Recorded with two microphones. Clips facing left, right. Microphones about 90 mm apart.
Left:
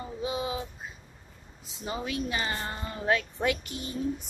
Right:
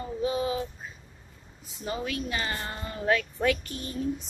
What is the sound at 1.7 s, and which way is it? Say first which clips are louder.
A woman's voice: right 1 dB; 20° left (ahead or behind).